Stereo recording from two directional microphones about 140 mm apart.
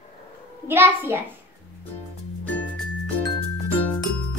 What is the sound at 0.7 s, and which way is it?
Speech, 15° right (ahead or behind).